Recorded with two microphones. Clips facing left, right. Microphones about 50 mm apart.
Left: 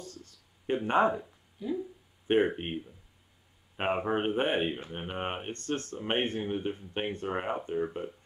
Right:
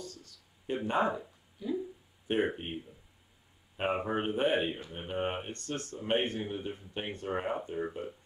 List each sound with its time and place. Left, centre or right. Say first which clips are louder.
0.0 s a sound: even; left
1.6 s speech: left 1 dB; centre
2.2 s speech: left 5 dB; left
3.7 s speech: left 2 dB; left